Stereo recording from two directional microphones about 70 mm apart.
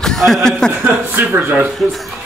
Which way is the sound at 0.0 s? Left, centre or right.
Centre.